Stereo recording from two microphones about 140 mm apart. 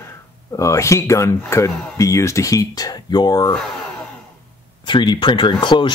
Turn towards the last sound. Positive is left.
turn(degrees=35)  # may be behind; listen again after turning